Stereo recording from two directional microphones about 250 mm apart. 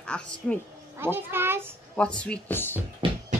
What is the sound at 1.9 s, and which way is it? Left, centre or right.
Speech, centre.